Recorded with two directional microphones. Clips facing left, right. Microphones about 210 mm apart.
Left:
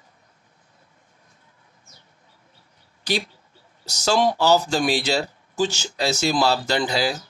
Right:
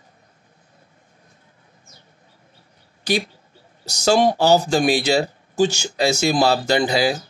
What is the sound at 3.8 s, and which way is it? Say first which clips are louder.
Speech: right 4 dB; 10° right (ahead or behind).